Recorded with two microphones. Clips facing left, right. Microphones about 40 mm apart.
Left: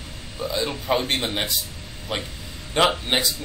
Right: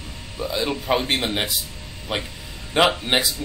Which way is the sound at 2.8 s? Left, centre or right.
Centre.